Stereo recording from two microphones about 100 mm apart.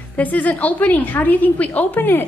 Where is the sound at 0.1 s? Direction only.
15° left (ahead or behind).